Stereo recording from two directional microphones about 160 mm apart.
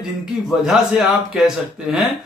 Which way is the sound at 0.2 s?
5° right (ahead or behind).